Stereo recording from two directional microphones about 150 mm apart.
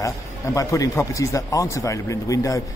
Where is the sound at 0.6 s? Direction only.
25° left (ahead or behind).